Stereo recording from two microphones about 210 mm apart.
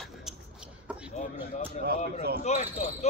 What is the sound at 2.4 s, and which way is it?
Speech, 35° left (ahead or behind).